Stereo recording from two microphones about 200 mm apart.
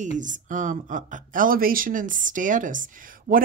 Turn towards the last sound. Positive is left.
turn(degrees=-45)  # may be behind; listen again after turning